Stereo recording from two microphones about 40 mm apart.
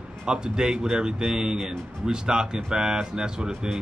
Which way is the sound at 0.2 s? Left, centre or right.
Centre.